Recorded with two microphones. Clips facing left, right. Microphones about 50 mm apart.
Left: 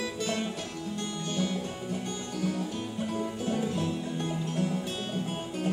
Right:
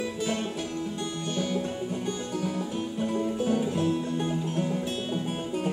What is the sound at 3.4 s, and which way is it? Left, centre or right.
Music, centre.